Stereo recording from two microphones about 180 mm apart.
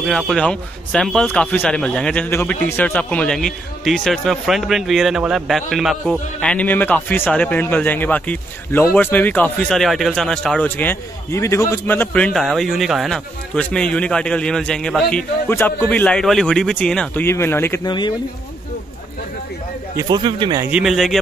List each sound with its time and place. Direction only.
0.0 s speech: centre (ahead or behind)
17.8 s speech: 25° left (ahead or behind)
20.0 s speech: 25° right (ahead or behind)
20.6 s speech: 5° right (ahead or behind)